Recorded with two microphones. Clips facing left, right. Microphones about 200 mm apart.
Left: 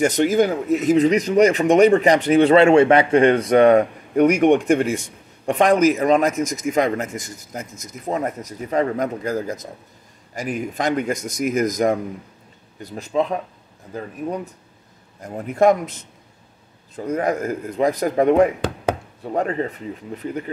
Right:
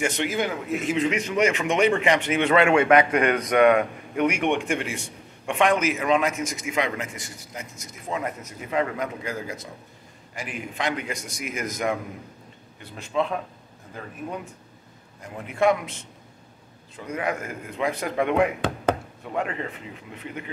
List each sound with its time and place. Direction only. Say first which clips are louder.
0.0 s speech: left 9 dB; 40° left (ahead or behind)